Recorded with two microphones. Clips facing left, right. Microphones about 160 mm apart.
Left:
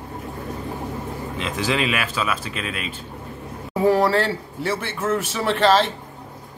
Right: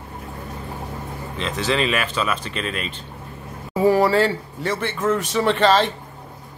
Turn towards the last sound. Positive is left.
turn(degrees=0)  # may be behind; listen again after turning